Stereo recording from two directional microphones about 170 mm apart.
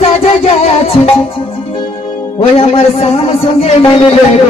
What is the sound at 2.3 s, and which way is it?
Music, 35° left (ahead or behind).